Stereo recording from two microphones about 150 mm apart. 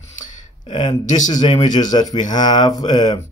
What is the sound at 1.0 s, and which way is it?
Speech, 55° left (ahead or behind).